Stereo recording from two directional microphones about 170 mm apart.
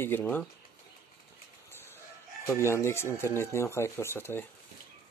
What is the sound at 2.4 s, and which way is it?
Speech, 15° left (ahead or behind).